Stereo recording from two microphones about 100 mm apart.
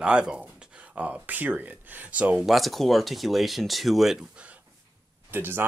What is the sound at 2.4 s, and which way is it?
Speech, centre (ahead or behind).